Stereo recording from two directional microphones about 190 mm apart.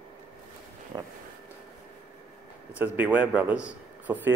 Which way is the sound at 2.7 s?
10° right (ahead or behind).